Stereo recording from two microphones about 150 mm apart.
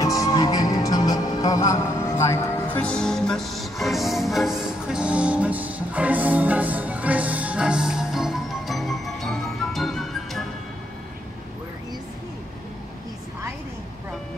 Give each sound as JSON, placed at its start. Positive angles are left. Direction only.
{"t": 0.0, "sound": "music", "side_deg": 20}